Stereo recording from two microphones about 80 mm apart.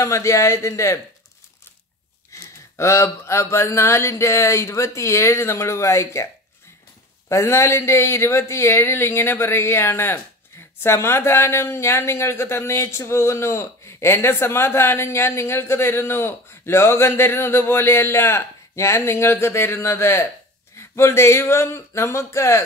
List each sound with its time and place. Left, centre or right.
0.0 s speech: left
2.3 s speech: left
7.2 s speech: left